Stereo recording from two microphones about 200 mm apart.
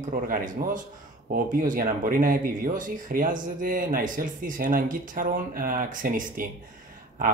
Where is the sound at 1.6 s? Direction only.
45° right (ahead or behind).